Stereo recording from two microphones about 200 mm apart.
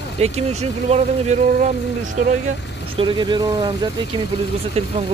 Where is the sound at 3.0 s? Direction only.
25° right (ahead or behind).